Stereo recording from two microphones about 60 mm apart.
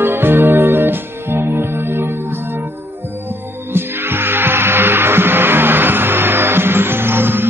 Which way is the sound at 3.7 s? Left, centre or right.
Right.